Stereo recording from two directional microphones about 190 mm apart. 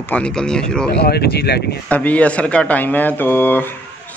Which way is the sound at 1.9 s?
10° left (ahead or behind).